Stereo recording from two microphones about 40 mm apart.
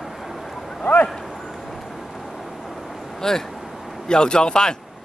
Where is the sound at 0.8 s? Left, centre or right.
Left.